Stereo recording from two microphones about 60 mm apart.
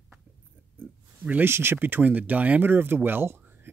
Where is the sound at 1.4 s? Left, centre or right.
Right.